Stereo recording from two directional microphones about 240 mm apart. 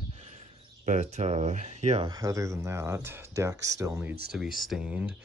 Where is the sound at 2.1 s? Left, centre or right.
Centre.